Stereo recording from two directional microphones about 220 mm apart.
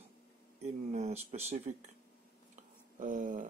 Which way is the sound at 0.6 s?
30° right (ahead or behind).